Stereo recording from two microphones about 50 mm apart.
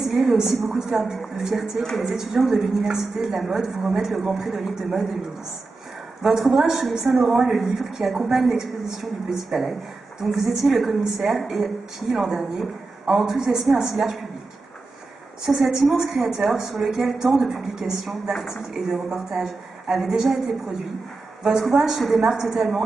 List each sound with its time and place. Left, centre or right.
0.0 s a woman's voice: centre
2.1 s a woman's voice: centre
6.2 s a woman's voice: centre
15.4 s a woman's voice: centre
21.5 s a woman's voice: centre